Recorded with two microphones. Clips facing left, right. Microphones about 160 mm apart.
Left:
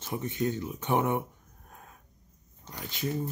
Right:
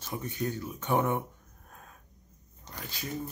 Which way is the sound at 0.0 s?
20° left (ahead or behind).